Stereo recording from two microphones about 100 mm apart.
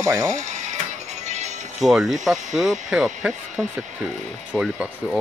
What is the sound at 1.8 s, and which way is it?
Speech, centre (ahead or behind).